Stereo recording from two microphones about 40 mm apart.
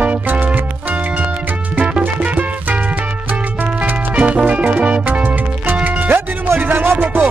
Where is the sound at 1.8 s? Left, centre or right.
Right.